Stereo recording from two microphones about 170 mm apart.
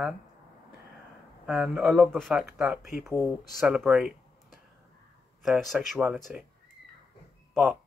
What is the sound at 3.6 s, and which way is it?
Speech, 5° right (ahead or behind).